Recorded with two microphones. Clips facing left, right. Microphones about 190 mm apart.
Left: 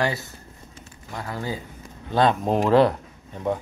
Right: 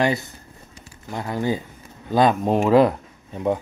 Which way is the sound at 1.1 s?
20° right (ahead or behind).